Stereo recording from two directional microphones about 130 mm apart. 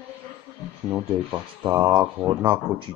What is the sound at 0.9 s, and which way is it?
Speech, 15° right (ahead or behind).